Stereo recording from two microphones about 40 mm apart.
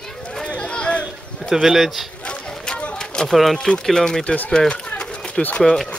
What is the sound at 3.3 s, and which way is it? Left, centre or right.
Speech, centre.